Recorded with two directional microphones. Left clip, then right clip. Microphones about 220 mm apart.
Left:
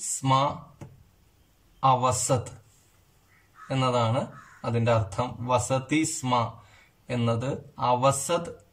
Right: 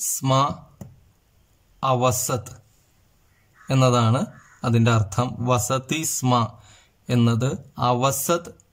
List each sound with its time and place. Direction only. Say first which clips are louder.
0.2 s speech: right 3 dB; 45° right (ahead or behind)
1.8 s speech: right 1 dB; 45° right (ahead or behind)
3.6 s speech: right 5 dB; 45° right (ahead or behind)